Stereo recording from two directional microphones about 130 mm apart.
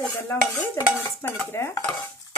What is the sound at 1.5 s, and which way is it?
Speech, 20° left (ahead or behind).